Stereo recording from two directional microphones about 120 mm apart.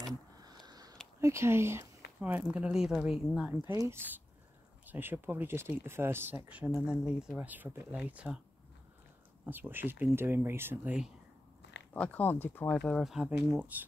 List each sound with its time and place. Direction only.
0.4 s a sound: 35° right (ahead or behind)
1.2 s speech: 20° right (ahead or behind); by 3.5 s 5° right (ahead or behind)
3.6 s speech: 25° right (ahead or behind)
6.7 s speech: 5° right (ahead or behind)
9.5 s speech: 15° right (ahead or behind)
11.9 s speech: 15° left (ahead or behind); by 13.8 s 10° right (ahead or behind)